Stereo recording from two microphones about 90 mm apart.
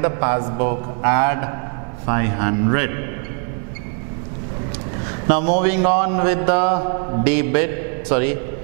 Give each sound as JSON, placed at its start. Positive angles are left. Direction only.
{"t": 0.0, "sound": "mantra", "side_deg": -15}
{"t": 5.3, "sound": "mantra", "side_deg": -10}